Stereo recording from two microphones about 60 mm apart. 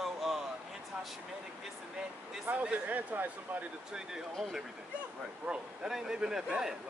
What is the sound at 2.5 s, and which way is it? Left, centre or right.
Speech, right.